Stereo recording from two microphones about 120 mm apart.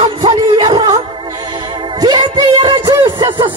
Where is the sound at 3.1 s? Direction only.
45° right (ahead or behind).